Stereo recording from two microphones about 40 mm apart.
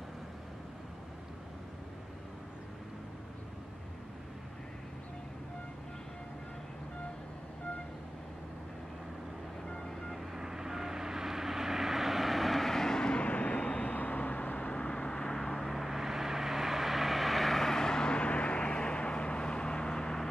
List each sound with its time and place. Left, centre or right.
9.7 s vehicle: centre
10.3 s vehicle: centre
13.2 s vehicle: left; by 15.6 s centre
15.6 s vehicle: centre